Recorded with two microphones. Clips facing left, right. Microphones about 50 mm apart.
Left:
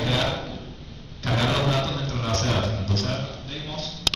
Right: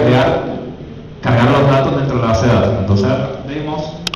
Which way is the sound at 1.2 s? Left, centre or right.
Right.